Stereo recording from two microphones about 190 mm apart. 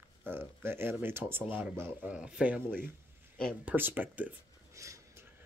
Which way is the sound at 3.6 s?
10° right (ahead or behind).